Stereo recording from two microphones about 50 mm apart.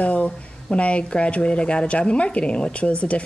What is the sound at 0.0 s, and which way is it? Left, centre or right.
Speech, left.